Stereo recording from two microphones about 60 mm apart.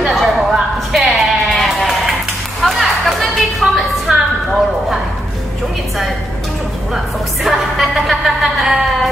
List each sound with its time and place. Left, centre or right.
0.0 s bleat: centre
2.6 s a sound: centre
7.4 s music: centre